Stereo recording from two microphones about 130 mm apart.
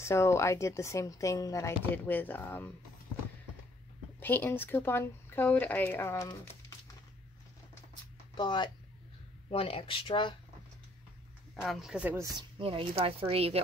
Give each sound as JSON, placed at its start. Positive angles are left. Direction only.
{"t": 0.0, "sound": "speech", "side_deg": 20}
{"t": 4.2, "sound": "speech", "side_deg": 15}
{"t": 8.4, "sound": "speech", "side_deg": 35}
{"t": 9.5, "sound": "speech", "side_deg": 45}
{"t": 11.6, "sound": "speech", "side_deg": 0}
{"t": 12.4, "sound": "speech", "side_deg": -45}